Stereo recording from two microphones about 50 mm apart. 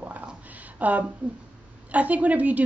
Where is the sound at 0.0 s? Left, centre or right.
Right.